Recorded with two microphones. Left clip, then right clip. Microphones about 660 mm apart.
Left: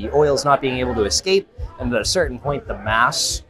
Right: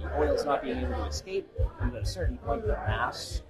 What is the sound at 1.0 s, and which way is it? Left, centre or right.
Speech, left.